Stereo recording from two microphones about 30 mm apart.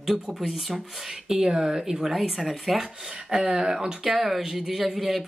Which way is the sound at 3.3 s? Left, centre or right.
Right.